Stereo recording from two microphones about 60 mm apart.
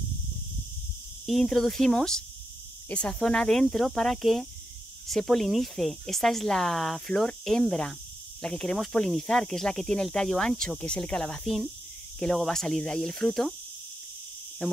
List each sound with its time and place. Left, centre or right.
1.2 s speech: centre
11.4 s speech: centre
12.4 s speech: centre
14.6 s speech: centre